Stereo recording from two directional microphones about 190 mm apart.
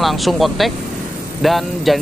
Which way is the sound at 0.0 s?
Centre (ahead or behind).